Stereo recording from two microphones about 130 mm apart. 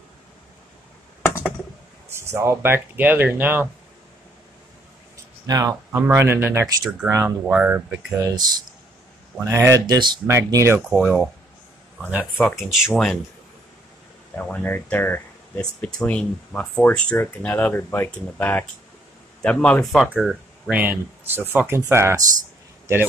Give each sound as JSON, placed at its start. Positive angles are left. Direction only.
{"t": 2.0, "sound": "speech", "side_deg": -20}
{"t": 5.1, "sound": "a sound", "side_deg": -25}
{"t": 5.9, "sound": "speech", "side_deg": -15}
{"t": 6.8, "sound": "speech", "side_deg": -5}
{"t": 7.1, "sound": "speech", "side_deg": -20}
{"t": 8.2, "sound": "speech", "side_deg": -25}
{"t": 10.3, "sound": "speech", "side_deg": -20}
{"t": 10.9, "sound": "speech", "side_deg": -5}
{"t": 12.5, "sound": "speech", "side_deg": 0}
{"t": 14.3, "sound": "speech", "side_deg": 10}
{"t": 20.7, "sound": "speech", "side_deg": -15}